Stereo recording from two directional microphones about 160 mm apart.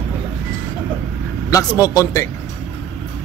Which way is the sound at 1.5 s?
20° left (ahead or behind).